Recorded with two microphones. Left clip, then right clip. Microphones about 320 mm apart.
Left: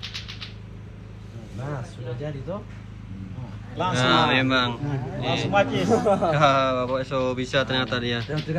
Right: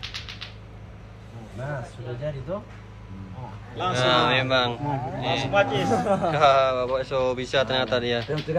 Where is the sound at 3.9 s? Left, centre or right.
Centre.